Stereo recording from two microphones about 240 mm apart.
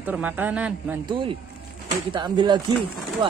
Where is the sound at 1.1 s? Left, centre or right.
Right.